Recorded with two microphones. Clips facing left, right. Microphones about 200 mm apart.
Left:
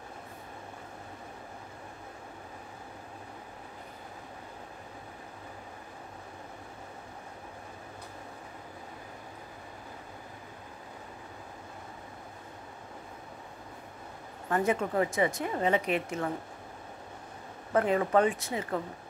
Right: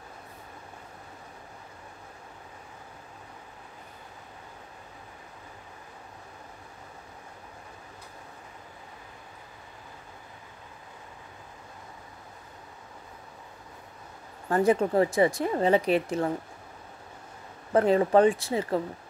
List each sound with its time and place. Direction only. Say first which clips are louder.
14.5 s speech: right 6 dB; 35° right (ahead or behind)
17.7 s speech: right 5 dB; 30° right (ahead or behind)